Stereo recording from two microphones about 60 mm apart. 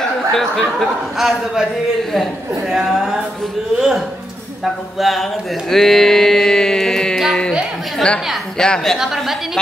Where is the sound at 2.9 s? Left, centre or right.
Centre.